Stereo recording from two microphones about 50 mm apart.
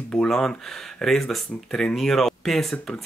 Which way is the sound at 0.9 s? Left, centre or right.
Centre.